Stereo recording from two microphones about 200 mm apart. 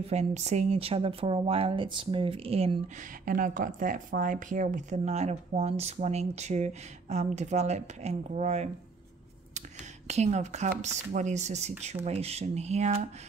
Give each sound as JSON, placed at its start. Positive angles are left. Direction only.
{"t": 0.0, "sound": "speech", "side_deg": -30}
{"t": 3.3, "sound": "speech", "side_deg": -40}
{"t": 10.0, "sound": "speech", "side_deg": -35}